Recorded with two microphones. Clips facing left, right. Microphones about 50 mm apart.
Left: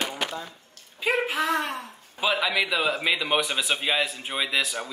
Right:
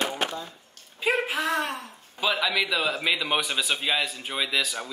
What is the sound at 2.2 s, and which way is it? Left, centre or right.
Speech, centre.